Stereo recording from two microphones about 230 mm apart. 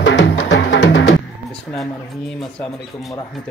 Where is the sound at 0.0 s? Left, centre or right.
Left.